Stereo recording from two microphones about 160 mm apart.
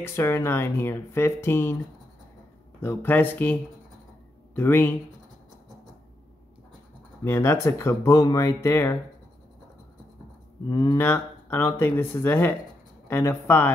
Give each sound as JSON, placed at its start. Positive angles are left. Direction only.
{"t": 0.0, "sound": "speech", "side_deg": 15}
{"t": 2.8, "sound": "speech", "side_deg": 15}
{"t": 4.6, "sound": "speech", "side_deg": 15}
{"t": 7.2, "sound": "speech", "side_deg": 15}
{"t": 10.7, "sound": "speech", "side_deg": 25}
{"t": 11.0, "sound": "speech", "side_deg": 15}